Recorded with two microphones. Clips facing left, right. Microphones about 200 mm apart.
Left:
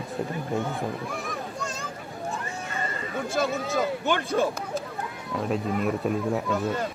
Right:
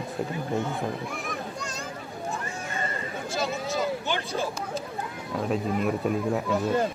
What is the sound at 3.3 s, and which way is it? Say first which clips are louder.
Speech: left 3 dB; 55° left (ahead or behind).